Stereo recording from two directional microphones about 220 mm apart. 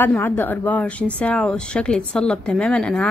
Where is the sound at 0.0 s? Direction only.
10° left (ahead or behind).